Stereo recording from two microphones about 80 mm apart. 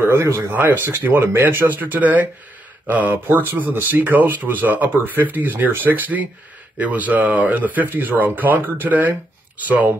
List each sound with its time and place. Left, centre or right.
0.0 s speech: right
0.5 s speech: right